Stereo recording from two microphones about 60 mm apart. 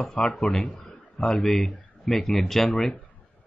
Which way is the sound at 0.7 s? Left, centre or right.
Left.